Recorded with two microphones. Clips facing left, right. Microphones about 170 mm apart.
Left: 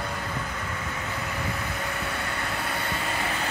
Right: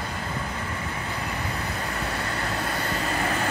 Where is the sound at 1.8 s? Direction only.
40° right (ahead or behind).